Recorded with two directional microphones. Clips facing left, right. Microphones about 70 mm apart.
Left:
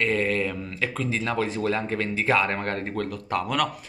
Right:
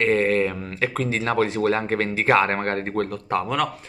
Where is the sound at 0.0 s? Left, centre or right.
Right.